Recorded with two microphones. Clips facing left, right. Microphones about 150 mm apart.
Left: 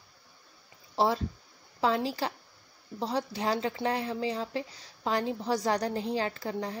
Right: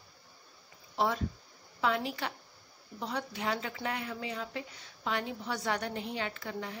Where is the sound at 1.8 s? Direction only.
35° left (ahead or behind).